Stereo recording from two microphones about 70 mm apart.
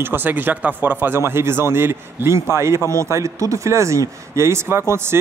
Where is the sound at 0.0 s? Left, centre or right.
Right.